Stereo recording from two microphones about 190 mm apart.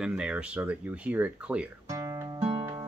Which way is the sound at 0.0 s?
5° right (ahead or behind).